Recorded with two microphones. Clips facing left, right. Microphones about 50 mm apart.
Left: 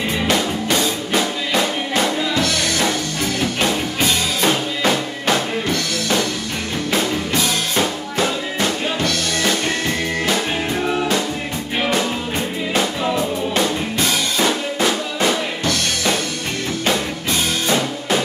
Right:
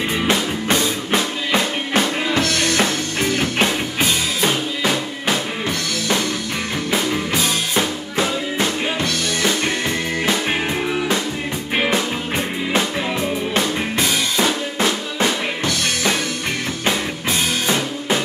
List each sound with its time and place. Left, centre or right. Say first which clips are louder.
0.3 s music: left 1 dB; right
4.0 s music: left 1 dB; centre
7.7 s music: even; centre
11.7 s music: right 1 dB; right